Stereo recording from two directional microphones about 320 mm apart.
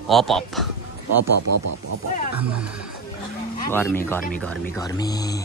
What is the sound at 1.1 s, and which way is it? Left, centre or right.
Speech, right.